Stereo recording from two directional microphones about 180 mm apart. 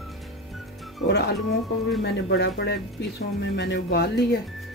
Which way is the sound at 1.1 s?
70° left (ahead or behind).